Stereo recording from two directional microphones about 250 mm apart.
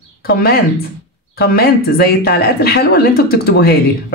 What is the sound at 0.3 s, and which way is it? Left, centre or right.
Speech, left.